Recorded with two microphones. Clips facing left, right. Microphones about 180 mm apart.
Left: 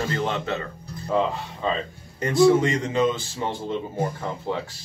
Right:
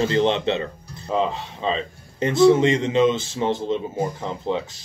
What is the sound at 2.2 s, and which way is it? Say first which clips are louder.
Speech: right 2 dB; 25° right (ahead or behind).